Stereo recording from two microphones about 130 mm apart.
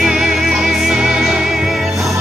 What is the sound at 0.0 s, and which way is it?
Music, 5° right (ahead or behind).